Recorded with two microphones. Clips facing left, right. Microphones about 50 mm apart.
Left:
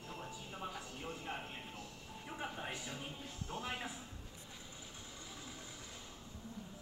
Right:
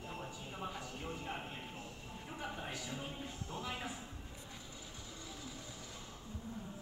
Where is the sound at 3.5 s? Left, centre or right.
Left.